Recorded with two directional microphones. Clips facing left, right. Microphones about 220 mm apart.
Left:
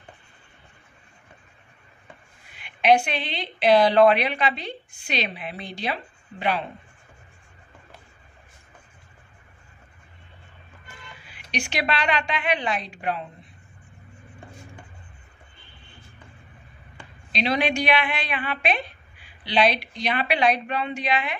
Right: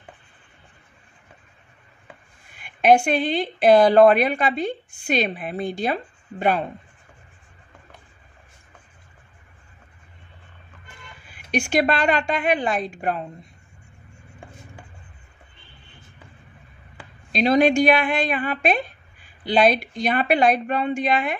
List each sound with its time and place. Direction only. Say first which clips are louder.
2.5 s a woman's voice: right 3 dB; 50° right (ahead or behind)
11.5 s a woman's voice: right 7 dB; 50° right (ahead or behind)
17.3 s a woman's voice: right 7 dB; 45° right (ahead or behind)